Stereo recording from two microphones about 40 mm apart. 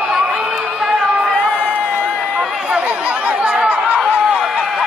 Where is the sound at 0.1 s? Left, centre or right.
Centre.